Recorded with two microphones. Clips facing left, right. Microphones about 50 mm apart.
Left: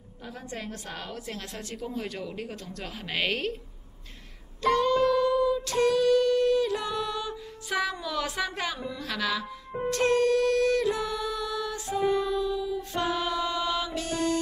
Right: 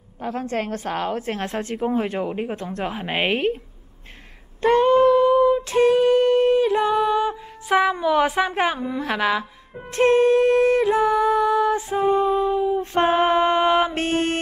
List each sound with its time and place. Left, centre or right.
0.2 s a woman's voice: right
4.6 s a sound: right
9.8 s music: right